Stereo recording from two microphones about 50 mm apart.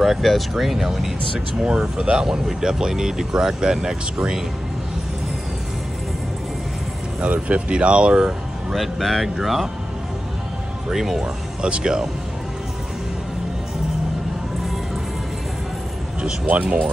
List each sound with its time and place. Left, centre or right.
0.0 s speech: centre
7.2 s speech: right
8.7 s speech: centre
10.9 s speech: centre
16.4 s speech: right